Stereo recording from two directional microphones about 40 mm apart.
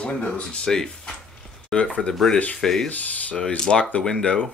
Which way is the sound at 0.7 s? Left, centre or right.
Centre.